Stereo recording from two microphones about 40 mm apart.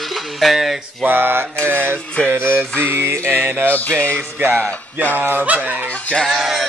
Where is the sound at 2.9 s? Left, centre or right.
Right.